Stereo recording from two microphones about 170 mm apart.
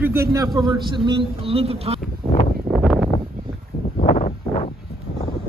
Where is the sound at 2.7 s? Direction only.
Centre (ahead or behind).